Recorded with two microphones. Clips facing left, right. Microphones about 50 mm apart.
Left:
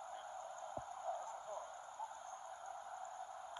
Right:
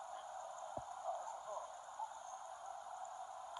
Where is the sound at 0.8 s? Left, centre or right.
Centre.